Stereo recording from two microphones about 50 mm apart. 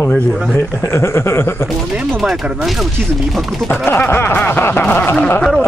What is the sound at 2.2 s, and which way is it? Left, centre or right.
Speech, centre.